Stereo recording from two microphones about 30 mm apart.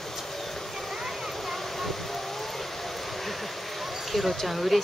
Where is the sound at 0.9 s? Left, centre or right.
Centre.